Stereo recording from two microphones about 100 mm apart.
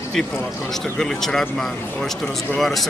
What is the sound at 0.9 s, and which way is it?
Speech, 5° left (ahead or behind).